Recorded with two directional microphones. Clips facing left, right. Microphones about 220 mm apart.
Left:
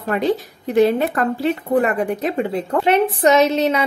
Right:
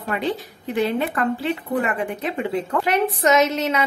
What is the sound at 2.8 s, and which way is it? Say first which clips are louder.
A woman's voice: left 6 dB; 30° left (ahead or behind).